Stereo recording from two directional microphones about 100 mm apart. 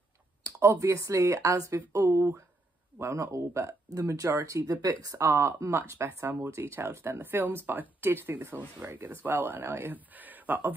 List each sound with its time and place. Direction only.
0.4 s speech: 30° right (ahead or behind)